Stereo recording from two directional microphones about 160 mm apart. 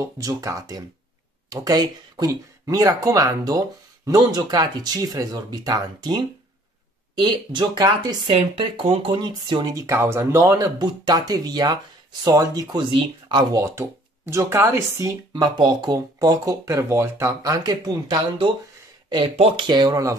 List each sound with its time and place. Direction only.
0.0 s speech: 20° right (ahead or behind)
8.4 s speech: 35° right (ahead or behind)
19.3 s speech: 35° right (ahead or behind)